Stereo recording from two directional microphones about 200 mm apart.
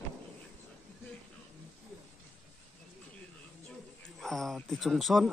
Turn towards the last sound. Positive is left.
turn(degrees=0)  # may be behind; listen again after turning